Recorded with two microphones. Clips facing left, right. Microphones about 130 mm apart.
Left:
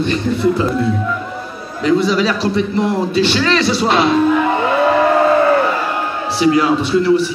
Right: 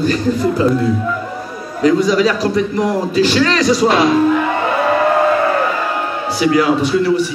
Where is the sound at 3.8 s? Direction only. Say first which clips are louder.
Right 2 dB; 30° left (ahead or behind).